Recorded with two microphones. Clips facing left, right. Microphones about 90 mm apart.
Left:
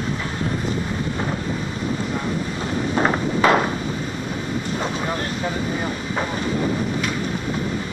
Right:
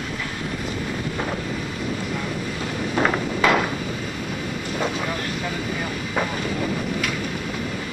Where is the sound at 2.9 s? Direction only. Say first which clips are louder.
Left 1 dB; 25° left (ahead or behind).